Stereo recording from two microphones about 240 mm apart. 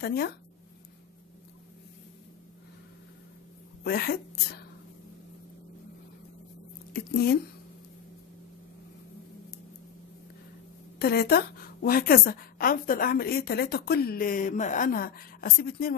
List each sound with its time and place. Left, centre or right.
0.0 s a woman's voice: left
3.8 s a woman's voice: left
6.9 s speech: left
11.0 s a woman's voice: left